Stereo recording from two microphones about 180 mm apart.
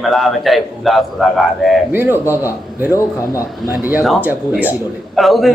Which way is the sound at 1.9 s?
10° right (ahead or behind).